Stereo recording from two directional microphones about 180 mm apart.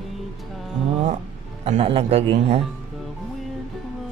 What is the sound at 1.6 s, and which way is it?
Speech, 35° right (ahead or behind).